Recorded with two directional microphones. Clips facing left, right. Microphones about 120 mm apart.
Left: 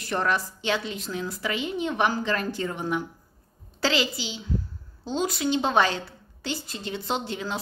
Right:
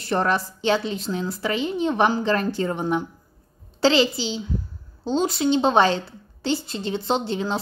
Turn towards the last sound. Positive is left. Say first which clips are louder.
# right 6 dB
turn(degrees=-30)  # may be behind; listen again after turning